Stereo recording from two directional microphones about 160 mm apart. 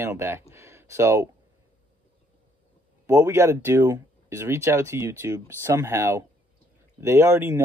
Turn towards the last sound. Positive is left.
turn(degrees=-15)  # may be behind; listen again after turning